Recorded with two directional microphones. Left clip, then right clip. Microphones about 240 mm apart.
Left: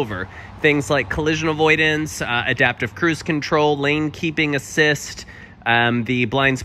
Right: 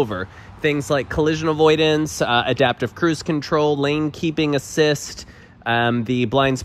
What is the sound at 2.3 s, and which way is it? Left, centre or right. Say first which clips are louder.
Speech: even; centre.